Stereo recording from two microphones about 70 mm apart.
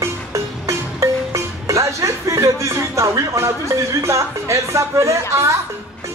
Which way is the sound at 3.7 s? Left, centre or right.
Right.